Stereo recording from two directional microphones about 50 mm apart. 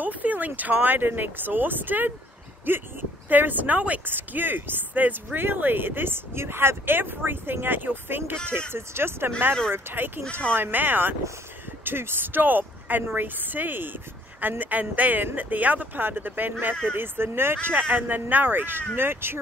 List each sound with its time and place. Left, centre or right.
0.0 s speech: right